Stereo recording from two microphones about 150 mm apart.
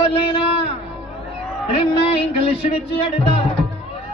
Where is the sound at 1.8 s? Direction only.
40° left (ahead or behind).